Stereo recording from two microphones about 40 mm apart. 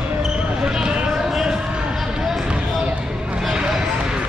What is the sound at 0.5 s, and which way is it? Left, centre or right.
Basketball bounce, centre.